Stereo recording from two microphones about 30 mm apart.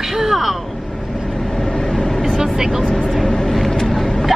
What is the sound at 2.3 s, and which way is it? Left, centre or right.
Vehicle, centre.